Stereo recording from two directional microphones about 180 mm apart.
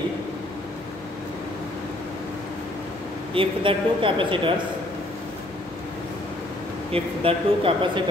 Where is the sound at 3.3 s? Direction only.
30° right (ahead or behind).